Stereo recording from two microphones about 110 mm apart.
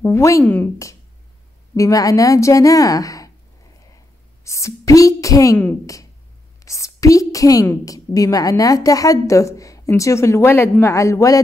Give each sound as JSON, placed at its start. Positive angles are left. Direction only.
{"t": 0.0, "sound": "speech", "side_deg": 25}
{"t": 1.8, "sound": "a woman's voice", "side_deg": 30}
{"t": 4.5, "sound": "a woman's voice", "side_deg": 30}
{"t": 6.6, "sound": "a woman's voice", "side_deg": 30}